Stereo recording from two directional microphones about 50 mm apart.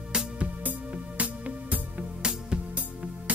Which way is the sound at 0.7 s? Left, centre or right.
Right.